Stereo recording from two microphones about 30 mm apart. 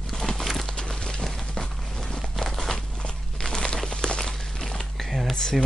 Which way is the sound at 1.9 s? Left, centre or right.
Centre.